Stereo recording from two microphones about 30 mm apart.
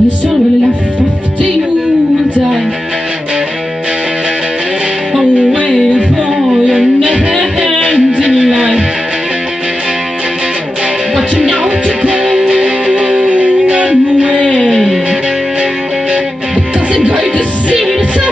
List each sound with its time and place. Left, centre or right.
7.2 s music: right
11.6 s music: right
13.7 s music: right
14.7 s music: centre
16.9 s music: right